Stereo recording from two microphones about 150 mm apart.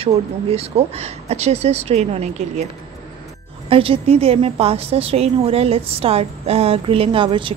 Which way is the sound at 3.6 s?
35° right (ahead or behind).